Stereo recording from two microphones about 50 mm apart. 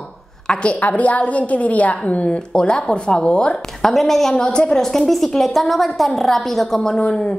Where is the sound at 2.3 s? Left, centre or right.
Centre.